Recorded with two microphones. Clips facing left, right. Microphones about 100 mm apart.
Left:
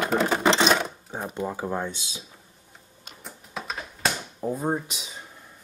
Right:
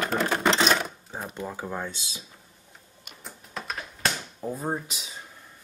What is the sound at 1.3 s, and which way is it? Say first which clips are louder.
Speech: left 5 dB; 20° left (ahead or behind).